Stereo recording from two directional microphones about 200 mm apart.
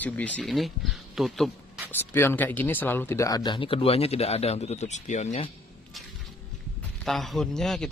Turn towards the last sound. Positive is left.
turn(degrees=0)  # may be behind; listen again after turning